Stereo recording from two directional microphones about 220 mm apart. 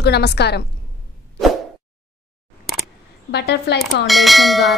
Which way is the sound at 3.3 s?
50° left (ahead or behind).